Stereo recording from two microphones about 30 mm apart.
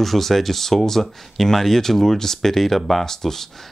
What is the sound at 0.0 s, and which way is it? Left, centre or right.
Speech, centre.